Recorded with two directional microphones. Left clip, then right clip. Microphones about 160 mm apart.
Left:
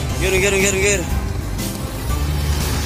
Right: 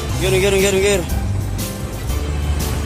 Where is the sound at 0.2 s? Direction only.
20° right (ahead or behind).